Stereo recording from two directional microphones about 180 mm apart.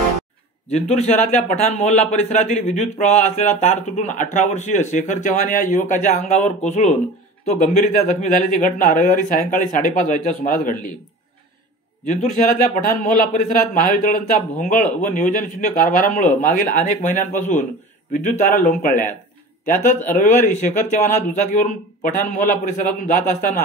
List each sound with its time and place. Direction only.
0.7 s a man's voice: 35° left (ahead or behind)
12.0 s a man's voice: 40° left (ahead or behind)
20.2 s a man's voice: 45° left (ahead or behind)